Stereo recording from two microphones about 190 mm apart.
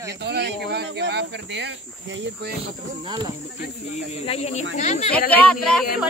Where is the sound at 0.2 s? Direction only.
65° right (ahead or behind).